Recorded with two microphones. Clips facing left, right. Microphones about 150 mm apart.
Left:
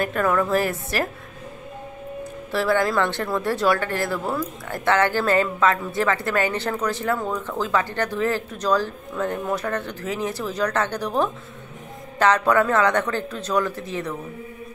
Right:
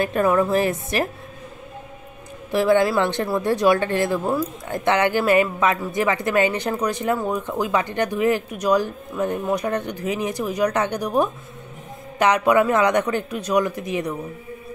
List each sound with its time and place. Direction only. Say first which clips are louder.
0.0 s a woman's voice: right 3 dB; 20° right (ahead or behind)
2.5 s speech: right 4 dB; 20° right (ahead or behind)